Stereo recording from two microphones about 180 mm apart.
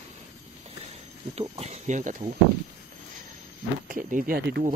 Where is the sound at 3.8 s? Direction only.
50° right (ahead or behind).